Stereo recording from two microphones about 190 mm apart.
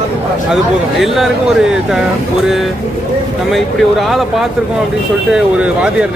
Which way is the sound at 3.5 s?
Centre (ahead or behind).